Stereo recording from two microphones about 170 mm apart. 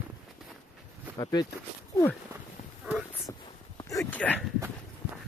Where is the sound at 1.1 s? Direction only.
25° left (ahead or behind).